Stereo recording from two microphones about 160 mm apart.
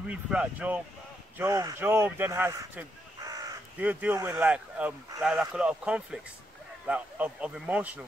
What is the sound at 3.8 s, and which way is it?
Speech, 10° right (ahead or behind).